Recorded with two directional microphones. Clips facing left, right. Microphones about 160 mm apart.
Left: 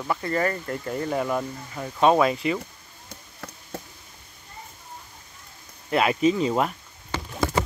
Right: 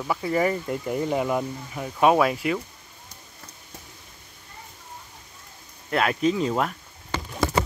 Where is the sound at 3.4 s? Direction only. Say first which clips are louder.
Left 9 dB; 80° left.